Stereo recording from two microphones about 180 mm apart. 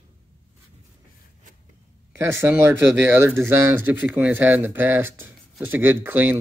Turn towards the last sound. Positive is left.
turn(degrees=-10)  # may be behind; listen again after turning